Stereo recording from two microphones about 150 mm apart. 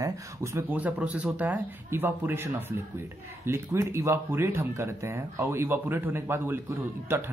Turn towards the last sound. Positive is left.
turn(degrees=-15)  # may be behind; listen again after turning